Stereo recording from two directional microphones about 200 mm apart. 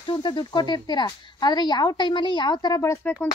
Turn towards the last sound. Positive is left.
turn(degrees=15)  # may be behind; listen again after turning